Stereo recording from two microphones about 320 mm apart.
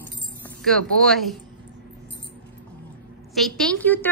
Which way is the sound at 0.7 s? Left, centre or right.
Centre.